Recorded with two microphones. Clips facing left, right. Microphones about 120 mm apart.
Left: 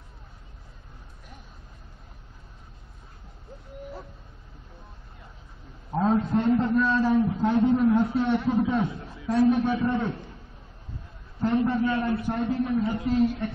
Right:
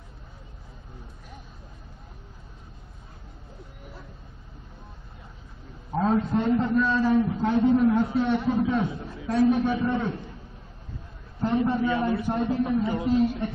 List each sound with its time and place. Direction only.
5.9 s a sound: 5° left (ahead or behind)
6.3 s a man's voice: 5° right (ahead or behind)
11.4 s a man's voice: 15° right (ahead or behind)